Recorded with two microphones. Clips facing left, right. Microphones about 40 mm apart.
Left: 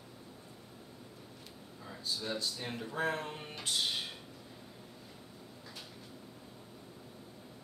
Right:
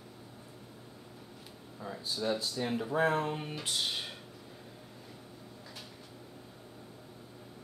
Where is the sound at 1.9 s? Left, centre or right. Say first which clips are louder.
Right 4 dB; centre.